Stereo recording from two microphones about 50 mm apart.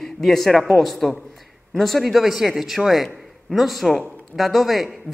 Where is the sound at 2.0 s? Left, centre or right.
Centre.